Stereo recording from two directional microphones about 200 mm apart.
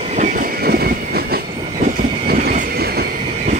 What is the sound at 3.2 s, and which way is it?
Train, 35° right (ahead or behind).